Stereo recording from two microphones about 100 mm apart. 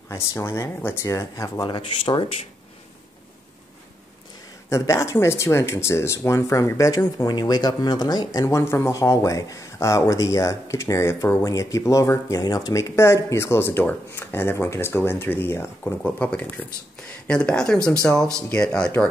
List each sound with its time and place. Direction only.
0.1 s speech: 30° left (ahead or behind)
1.6 s speech: 55° left (ahead or behind)
4.6 s speech: 30° left (ahead or behind)
7.2 s speech: 45° left (ahead or behind); by 15.9 s 25° left (ahead or behind)
16.0 s speech: 15° left (ahead or behind)